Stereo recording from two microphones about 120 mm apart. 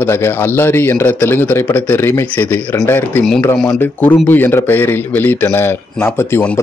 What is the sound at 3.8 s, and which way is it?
A man's voice, 15° left (ahead or behind).